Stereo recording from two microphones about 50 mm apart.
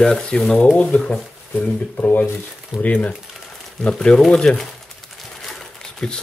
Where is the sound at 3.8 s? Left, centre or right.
Centre.